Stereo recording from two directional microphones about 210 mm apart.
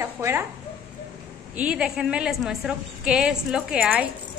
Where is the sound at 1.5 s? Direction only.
5° right (ahead or behind).